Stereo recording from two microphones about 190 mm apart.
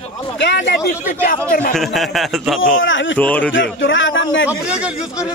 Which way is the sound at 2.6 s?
85° left.